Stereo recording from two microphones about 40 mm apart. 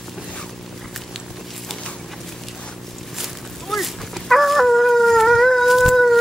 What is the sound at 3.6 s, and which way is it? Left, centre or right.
Dog, centre.